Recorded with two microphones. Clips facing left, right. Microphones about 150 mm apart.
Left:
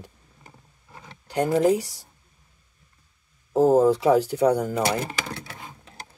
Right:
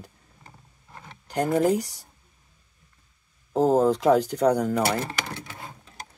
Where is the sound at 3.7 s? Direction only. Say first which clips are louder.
Left 1 dB; 10° left (ahead or behind).